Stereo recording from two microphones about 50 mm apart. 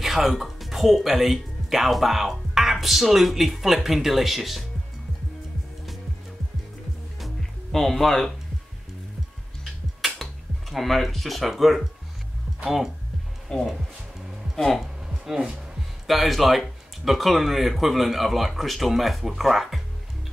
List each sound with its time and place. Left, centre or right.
0.0 s speech: centre
7.2 s music: centre
10.7 s speech: centre
13.5 s speech: centre
15.0 s a sound: centre
16.1 s speech: centre